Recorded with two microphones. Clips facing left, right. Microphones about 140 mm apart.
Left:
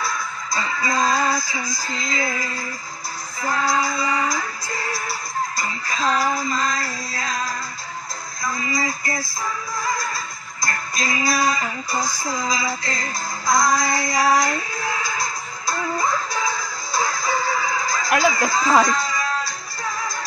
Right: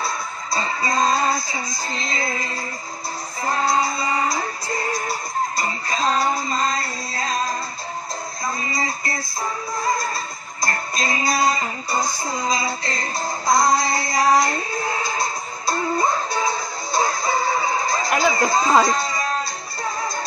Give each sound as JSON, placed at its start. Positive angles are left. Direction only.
{"t": 0.0, "sound": "music", "side_deg": -30}